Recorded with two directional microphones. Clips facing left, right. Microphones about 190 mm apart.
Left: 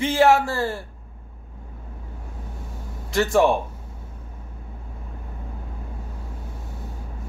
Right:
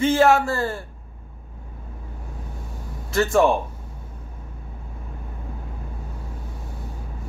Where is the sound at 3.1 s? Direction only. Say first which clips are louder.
Even; 15° left (ahead or behind).